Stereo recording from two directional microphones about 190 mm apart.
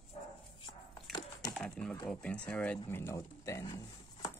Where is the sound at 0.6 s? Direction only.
20° left (ahead or behind).